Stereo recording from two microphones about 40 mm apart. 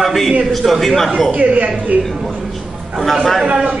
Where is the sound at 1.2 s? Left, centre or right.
Right.